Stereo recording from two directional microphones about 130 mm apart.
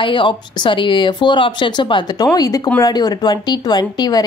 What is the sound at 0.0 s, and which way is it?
Speech, 40° left (ahead or behind).